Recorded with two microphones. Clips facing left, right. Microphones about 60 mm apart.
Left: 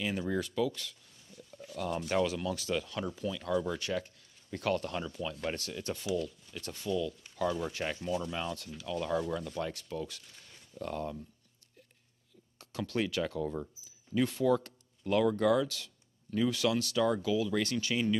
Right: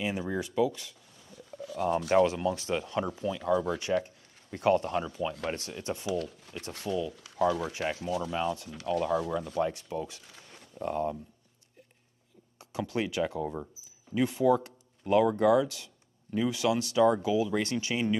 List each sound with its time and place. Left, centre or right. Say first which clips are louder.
0.0 s speech: right 1 dB; centre
1.5 s pigeon: right 7 dB; right
2.0 s speech: right 6 dB; right
6.9 s speech: right 1 dB; right
7.4 s rub: right 4 dB; right
8.3 s speech: right 6 dB; centre
8.7 s speech: right 7 dB; right
9.3 s speech: right 6 dB; right
12.5 s speech: right 2 dB; centre